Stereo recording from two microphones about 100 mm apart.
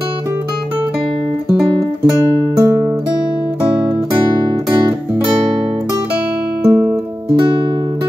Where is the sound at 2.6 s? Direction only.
30° right (ahead or behind).